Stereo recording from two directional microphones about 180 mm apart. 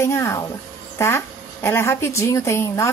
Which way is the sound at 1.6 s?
15° left (ahead or behind).